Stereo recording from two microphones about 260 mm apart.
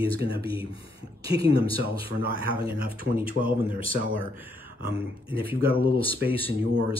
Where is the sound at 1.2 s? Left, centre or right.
Right.